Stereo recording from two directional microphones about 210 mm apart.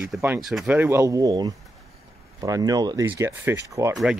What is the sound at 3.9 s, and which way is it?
Speech, centre (ahead or behind).